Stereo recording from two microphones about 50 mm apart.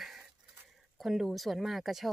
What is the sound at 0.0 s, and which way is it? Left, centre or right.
Dishes, centre.